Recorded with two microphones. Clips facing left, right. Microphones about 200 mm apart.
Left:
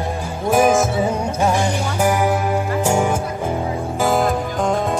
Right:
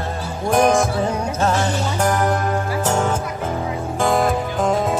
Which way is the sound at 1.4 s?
15° left (ahead or behind).